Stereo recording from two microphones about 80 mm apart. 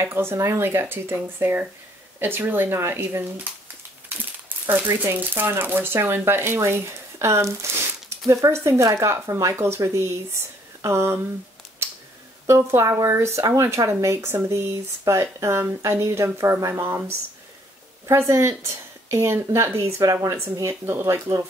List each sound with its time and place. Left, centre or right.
0.0 s speech: right
4.5 s speech: right
11.8 s a sound: right
12.4 s speech: right
18.1 s speech: right